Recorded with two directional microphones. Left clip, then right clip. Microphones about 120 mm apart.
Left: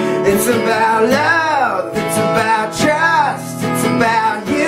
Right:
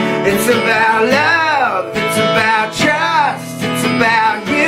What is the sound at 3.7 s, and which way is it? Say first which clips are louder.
Music: even; 25° right (ahead or behind).